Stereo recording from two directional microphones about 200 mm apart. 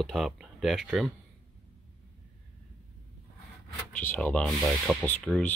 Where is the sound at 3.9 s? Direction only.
5° left (ahead or behind).